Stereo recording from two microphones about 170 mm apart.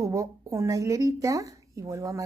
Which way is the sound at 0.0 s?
20° right (ahead or behind).